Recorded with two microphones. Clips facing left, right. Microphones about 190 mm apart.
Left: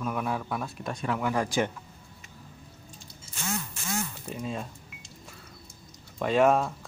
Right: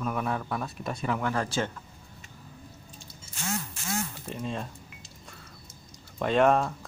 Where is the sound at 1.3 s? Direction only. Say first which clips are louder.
Left 2 dB; 15° left (ahead or behind).